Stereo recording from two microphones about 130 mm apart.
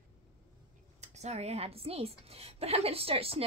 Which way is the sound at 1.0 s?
60° right (ahead or behind).